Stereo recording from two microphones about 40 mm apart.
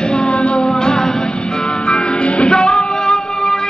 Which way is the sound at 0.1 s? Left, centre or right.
Left.